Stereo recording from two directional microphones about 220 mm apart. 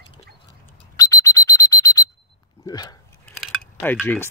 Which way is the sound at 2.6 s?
15° left (ahead or behind).